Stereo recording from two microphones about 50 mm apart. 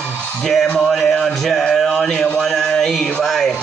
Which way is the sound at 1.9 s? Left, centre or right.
Centre.